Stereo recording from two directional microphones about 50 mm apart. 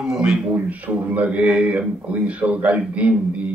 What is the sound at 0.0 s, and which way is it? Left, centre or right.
Speech, centre.